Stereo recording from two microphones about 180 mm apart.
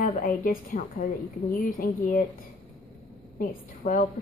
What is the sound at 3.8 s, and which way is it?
Speech, 40° left (ahead or behind).